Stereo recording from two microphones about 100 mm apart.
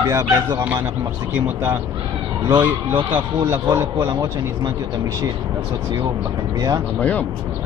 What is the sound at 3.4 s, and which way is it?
Speech, 30° right (ahead or behind).